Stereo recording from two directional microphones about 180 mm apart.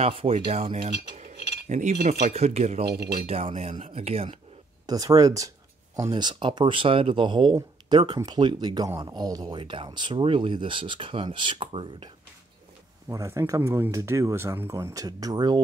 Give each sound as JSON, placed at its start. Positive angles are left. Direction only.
{"t": 0.0, "sound": "speech", "side_deg": -35}
{"t": 4.8, "sound": "speech", "side_deg": -20}
{"t": 13.1, "sound": "speech", "side_deg": -15}